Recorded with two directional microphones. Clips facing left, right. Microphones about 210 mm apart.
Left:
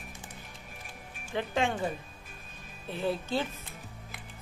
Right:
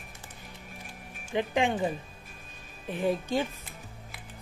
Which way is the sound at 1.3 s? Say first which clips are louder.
Right 3 dB; 15° right (ahead or behind).